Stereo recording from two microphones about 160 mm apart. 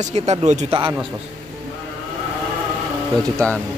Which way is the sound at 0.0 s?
45° right (ahead or behind).